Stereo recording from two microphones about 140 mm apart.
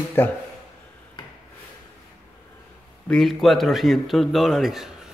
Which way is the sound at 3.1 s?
Centre (ahead or behind).